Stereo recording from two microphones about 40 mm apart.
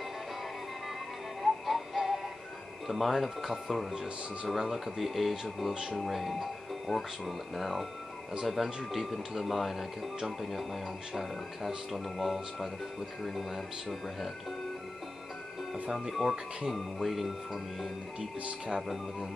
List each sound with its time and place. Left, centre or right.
1.4 s music: centre
2.9 s speech: centre
15.7 s speech: centre
18.7 s speech: centre